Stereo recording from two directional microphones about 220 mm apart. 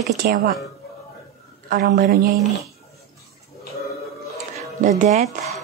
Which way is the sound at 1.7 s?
50° right (ahead or behind).